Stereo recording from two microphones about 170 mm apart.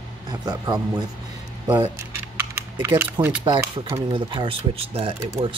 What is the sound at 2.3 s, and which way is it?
Typing, 15° right (ahead or behind).